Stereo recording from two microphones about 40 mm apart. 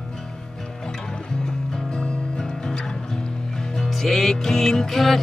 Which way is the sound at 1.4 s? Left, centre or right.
Centre.